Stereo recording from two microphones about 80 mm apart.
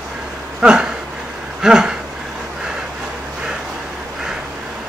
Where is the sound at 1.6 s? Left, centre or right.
Centre.